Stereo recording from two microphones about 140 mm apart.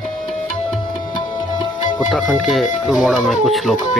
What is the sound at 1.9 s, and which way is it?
Speech, centre (ahead or behind).